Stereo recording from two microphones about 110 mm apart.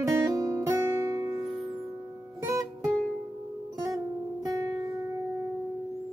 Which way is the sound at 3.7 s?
35° right (ahead or behind).